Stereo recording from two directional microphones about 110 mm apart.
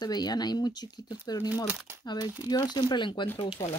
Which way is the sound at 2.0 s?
40° left (ahead or behind).